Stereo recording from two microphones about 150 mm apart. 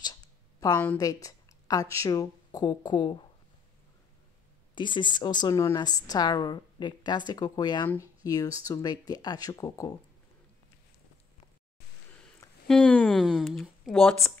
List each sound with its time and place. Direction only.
0.0 s a sound: 25° left (ahead or behind)
0.9 s speech: 25° left (ahead or behind)
4.7 s a woman's voice: 30° left (ahead or behind)
12.6 s speech: 5° left (ahead or behind)